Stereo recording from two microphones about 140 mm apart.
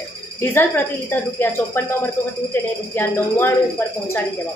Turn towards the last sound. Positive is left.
turn(degrees=15)  # may be behind; listen again after turning